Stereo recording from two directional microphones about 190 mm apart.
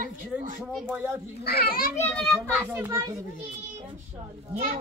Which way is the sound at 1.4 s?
55° left (ahead or behind).